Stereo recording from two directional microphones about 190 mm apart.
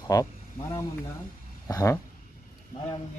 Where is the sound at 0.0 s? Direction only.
20° left (ahead or behind).